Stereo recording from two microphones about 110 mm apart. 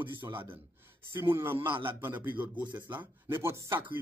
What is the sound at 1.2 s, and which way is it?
Music, 20° right (ahead or behind).